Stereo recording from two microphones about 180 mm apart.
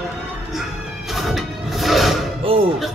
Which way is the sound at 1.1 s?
Centre (ahead or behind).